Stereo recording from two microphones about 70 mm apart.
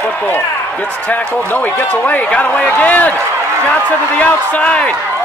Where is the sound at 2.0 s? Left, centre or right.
Left.